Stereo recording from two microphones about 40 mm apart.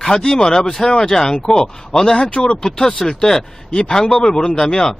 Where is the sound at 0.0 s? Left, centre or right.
Centre.